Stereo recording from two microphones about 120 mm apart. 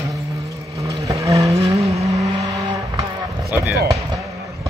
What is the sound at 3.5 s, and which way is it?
Basketball bounce, 20° right (ahead or behind).